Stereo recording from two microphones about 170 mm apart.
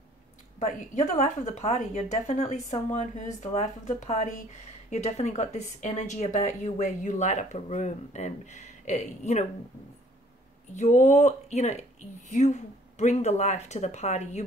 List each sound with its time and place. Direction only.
0.6 s speech: 45° left (ahead or behind)
10.7 s speech: 45° left (ahead or behind)